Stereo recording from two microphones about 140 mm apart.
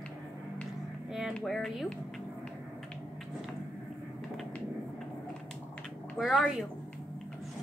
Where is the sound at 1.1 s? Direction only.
5° right (ahead or behind).